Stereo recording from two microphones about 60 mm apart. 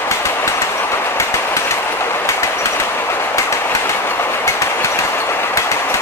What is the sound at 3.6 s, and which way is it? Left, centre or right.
Train, left.